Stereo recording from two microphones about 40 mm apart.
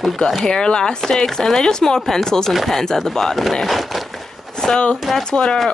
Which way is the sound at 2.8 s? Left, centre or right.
Centre.